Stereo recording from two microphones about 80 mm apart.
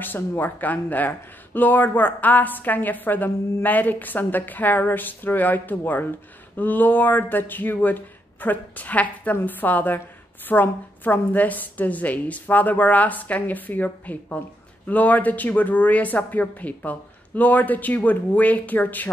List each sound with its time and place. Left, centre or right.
0.0 s speech: left